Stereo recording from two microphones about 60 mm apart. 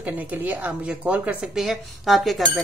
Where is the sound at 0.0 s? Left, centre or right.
Right.